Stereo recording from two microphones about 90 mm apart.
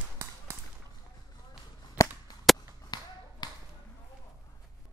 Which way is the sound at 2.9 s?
50° left (ahead or behind).